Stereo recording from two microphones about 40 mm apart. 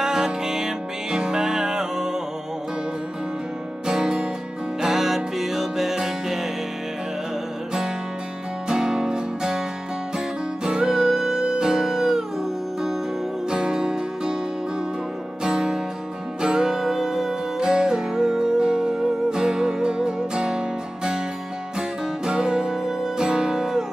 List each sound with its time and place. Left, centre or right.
0.0 s music: centre
3.8 s music: centre
8.6 s music: centre
13.5 s music: centre
15.4 s music: centre